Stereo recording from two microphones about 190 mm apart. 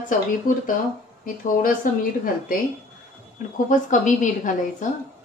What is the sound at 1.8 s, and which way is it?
Speech, 45° left (ahead or behind).